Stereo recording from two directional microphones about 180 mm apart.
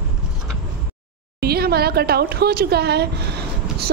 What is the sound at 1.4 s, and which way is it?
Speech, 60° right (ahead or behind).